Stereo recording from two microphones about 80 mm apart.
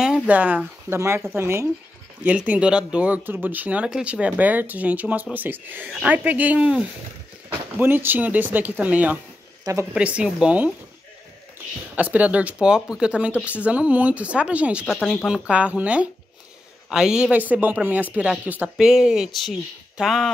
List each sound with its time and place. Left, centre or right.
0.3 s speech: right
0.9 s speech: right
2.2 s speech: centre
11.9 s speech: centre
15.0 s speech: centre
15.2 s speech: centre
17.5 s speech: right; by 20.2 s centre